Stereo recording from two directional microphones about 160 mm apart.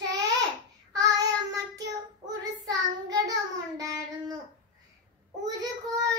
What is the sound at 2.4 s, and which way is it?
Child singing, 20° right (ahead or behind).